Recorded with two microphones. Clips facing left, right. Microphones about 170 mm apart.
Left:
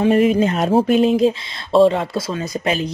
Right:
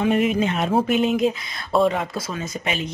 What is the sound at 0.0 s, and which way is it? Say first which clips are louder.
Speech: left 5 dB; 35° left (ahead or behind).